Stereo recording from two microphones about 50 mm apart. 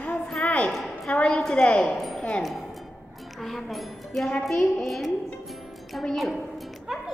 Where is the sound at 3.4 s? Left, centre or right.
Centre.